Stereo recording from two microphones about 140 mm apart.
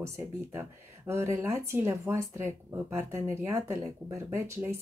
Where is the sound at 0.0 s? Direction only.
20° right (ahead or behind).